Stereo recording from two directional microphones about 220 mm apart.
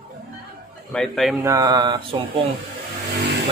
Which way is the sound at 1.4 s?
15° right (ahead or behind).